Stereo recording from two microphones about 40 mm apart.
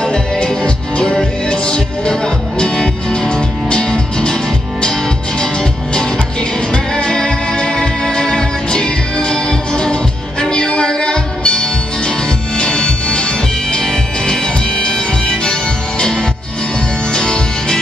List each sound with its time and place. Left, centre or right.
0.0 s music: centre
5.4 s music: centre